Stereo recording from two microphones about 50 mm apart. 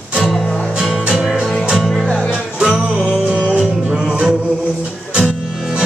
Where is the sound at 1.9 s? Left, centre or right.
Centre.